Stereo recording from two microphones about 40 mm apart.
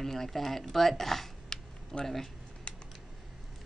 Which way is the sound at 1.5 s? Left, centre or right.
Centre.